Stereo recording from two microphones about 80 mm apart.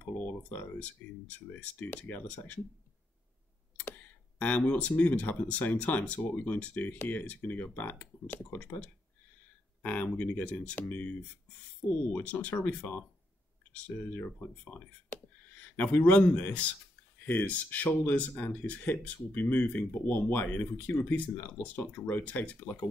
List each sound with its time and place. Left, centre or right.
0.0 s speech: left
3.7 s speech: left